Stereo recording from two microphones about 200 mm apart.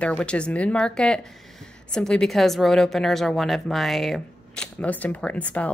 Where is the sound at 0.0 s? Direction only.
5° left (ahead or behind).